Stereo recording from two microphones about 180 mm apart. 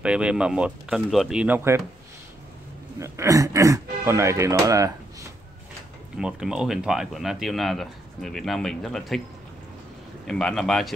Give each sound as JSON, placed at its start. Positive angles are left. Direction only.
{"t": 0.0, "sound": "speech", "side_deg": -5}
{"t": 3.0, "sound": "speech", "side_deg": -15}
{"t": 6.1, "sound": "speech", "side_deg": -5}
{"t": 10.2, "sound": "speech", "side_deg": 5}